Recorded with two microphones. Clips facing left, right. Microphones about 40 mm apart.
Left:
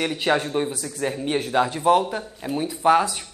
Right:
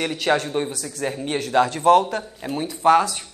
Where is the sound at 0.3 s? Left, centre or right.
Centre.